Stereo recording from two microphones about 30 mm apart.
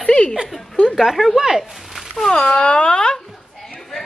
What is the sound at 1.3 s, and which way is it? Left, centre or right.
A man's voice, centre.